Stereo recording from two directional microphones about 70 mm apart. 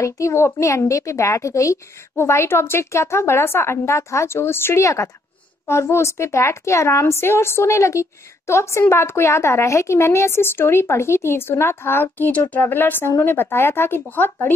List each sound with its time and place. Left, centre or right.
0.0 s a woman's voice: left